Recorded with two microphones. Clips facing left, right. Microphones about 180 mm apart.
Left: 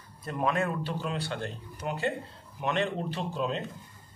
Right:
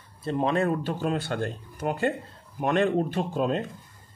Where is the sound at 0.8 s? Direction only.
50° right (ahead or behind).